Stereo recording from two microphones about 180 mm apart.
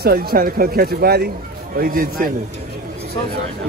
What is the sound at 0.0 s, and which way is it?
Speech, 60° right (ahead or behind).